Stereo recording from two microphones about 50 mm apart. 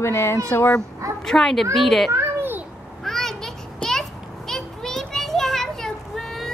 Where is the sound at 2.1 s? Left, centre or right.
Right.